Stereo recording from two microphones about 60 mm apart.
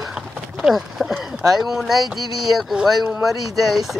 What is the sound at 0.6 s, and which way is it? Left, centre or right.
Speech, centre.